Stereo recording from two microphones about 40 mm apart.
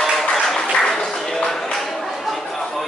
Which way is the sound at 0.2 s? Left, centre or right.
Centre.